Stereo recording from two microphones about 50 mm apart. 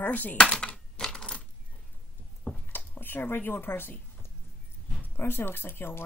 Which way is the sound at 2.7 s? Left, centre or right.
Left.